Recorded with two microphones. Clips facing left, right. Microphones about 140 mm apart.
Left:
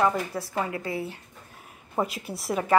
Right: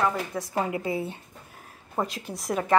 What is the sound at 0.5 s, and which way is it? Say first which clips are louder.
Speech: right 3 dB; 20° right (ahead or behind).